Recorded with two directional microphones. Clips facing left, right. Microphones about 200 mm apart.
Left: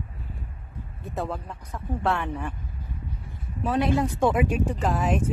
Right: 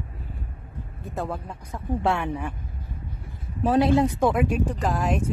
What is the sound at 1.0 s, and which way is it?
Speech, centre (ahead or behind).